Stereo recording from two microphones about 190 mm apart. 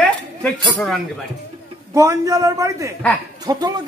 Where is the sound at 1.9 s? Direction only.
15° right (ahead or behind).